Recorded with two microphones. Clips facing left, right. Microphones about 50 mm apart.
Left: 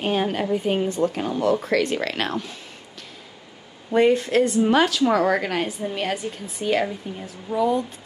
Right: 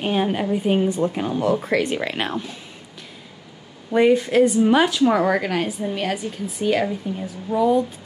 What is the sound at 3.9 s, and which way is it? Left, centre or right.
Speech, left.